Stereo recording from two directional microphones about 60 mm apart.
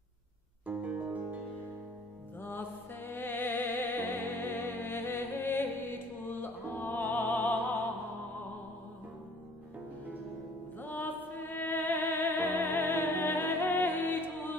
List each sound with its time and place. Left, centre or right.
0.7 s music: right
2.5 s music: left
10.8 s music: left